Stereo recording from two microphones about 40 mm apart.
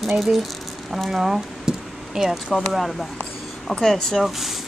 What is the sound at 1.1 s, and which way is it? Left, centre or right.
Squish, centre.